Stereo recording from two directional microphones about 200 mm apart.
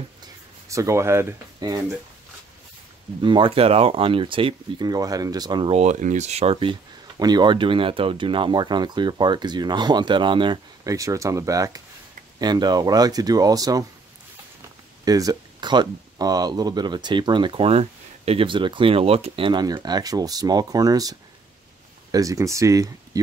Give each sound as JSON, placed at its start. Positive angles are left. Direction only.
{"t": 0.7, "sound": "speech", "side_deg": -15}
{"t": 3.2, "sound": "speech", "side_deg": -25}
{"t": 5.8, "sound": "speech", "side_deg": -40}
{"t": 15.0, "sound": "speech", "side_deg": -20}